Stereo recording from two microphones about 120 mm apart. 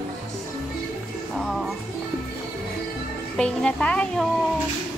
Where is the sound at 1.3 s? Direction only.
Centre (ahead or behind).